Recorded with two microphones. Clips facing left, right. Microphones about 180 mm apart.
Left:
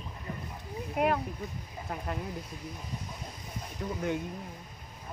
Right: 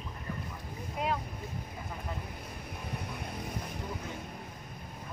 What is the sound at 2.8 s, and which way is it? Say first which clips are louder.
Music: right 2 dB; 60° right (ahead or behind).